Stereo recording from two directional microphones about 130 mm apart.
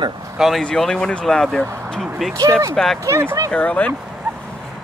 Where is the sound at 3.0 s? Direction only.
20° right (ahead or behind).